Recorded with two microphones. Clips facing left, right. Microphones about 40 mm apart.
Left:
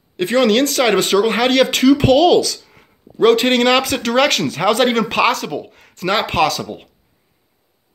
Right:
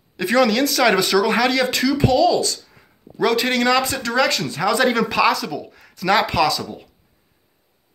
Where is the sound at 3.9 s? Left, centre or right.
Left.